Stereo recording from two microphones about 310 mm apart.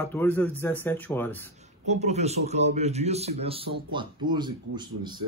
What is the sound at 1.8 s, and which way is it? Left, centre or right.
A man's voice, right.